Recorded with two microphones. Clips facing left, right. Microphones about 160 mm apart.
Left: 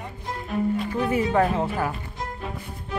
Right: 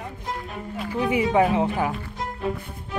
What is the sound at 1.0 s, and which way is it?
Speech, 15° right (ahead or behind).